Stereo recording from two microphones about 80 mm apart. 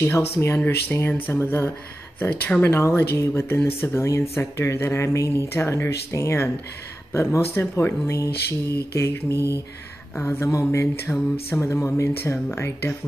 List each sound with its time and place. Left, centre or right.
0.0 s speech: left